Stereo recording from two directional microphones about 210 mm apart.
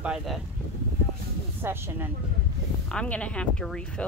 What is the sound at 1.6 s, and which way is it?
Speech, 10° right (ahead or behind).